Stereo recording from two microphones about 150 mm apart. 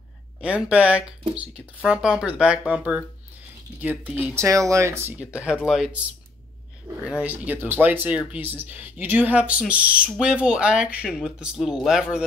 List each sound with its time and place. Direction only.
0.4 s speech: 5° right (ahead or behind)
5.2 s speech: 5° right (ahead or behind)
7.1 s speech: 10° right (ahead or behind)